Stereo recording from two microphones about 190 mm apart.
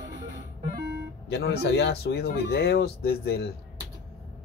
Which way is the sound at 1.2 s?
60° left (ahead or behind).